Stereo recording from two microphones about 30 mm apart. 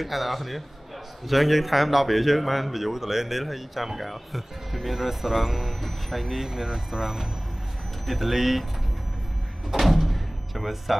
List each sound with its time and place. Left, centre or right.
0.0 s speech: centre
9.7 s door: centre